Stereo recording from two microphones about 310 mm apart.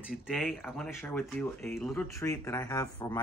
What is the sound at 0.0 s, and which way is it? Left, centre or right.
Speech, centre.